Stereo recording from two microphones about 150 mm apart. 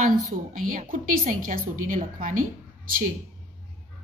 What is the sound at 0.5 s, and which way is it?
A woman's voice, 60° right (ahead or behind).